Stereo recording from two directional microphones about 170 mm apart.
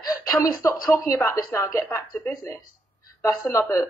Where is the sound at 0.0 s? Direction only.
20° left (ahead or behind).